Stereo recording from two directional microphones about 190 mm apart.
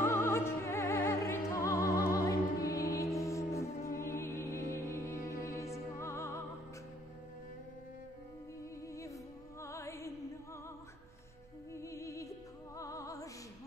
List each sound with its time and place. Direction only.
0.0 s music: 15° left (ahead or behind)
8.8 s music: 15° left (ahead or behind)
11.7 s music: 15° left (ahead or behind)